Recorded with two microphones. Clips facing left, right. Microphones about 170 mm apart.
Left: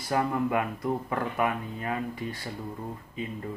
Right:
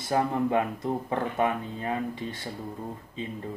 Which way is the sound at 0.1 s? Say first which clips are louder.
Right 2 dB; 25° right (ahead or behind).